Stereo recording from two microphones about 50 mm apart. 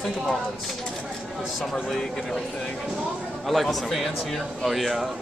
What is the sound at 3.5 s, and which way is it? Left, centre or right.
A man's voice, centre.